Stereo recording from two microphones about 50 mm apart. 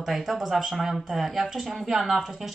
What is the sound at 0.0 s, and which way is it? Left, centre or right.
A man's voice, centre.